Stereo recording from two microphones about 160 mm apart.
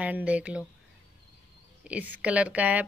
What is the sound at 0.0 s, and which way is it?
Speech, 10° right (ahead or behind).